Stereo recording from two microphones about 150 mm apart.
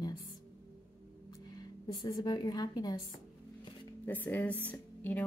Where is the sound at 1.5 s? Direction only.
30° left (ahead or behind).